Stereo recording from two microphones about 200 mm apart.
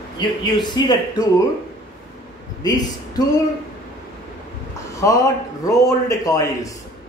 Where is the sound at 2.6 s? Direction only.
20° left (ahead or behind).